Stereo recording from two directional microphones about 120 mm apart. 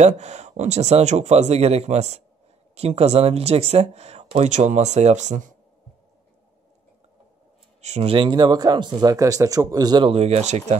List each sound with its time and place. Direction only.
0.0 s speech: 70° right (ahead or behind)
7.8 s speech: 70° right (ahead or behind)
8.1 s speech: 40° right (ahead or behind)
10.0 s speech: 60° right (ahead or behind)